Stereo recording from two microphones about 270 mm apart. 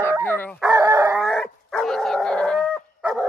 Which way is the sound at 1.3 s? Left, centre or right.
Centre.